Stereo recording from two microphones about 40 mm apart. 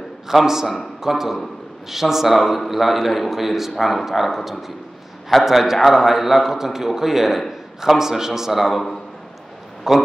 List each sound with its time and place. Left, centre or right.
0.3 s a man's voice: centre
9.9 s a man's voice: centre